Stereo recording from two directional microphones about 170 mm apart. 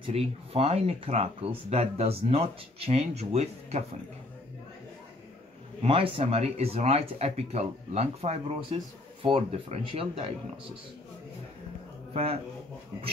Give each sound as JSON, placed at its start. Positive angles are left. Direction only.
{"t": 0.0, "sound": "speech", "side_deg": -35}
{"t": 5.8, "sound": "speech", "side_deg": -30}
{"t": 12.1, "sound": "speech", "side_deg": -35}